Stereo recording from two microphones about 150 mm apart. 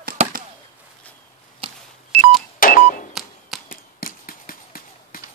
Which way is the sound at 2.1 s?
40° right (ahead or behind).